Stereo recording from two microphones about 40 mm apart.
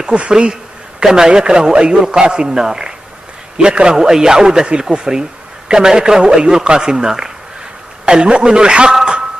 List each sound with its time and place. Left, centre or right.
0.0 s a man's voice: right
8.0 s speech: right